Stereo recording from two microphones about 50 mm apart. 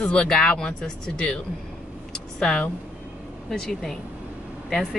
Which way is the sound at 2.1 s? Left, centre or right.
Centre.